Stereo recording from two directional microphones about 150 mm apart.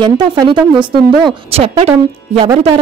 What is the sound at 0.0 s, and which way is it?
Speech, 30° right (ahead or behind).